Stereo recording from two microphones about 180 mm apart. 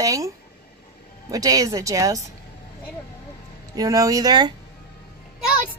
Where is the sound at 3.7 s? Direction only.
20° right (ahead or behind).